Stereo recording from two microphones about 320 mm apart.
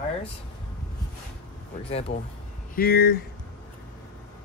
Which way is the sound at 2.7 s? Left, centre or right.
Left.